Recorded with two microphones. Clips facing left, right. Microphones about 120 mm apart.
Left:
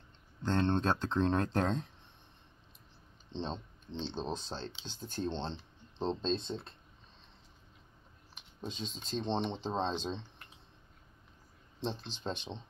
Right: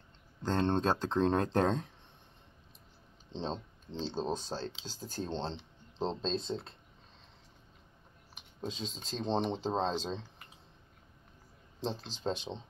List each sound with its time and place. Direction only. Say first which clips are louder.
0.4 s speech: right 1 dB; 35° right (ahead or behind)
3.4 s speech: right 3 dB; 40° right (ahead or behind)
8.5 s speech: right 2 dB; 35° right (ahead or behind)
11.8 s speech: right 2 dB; 35° right (ahead or behind)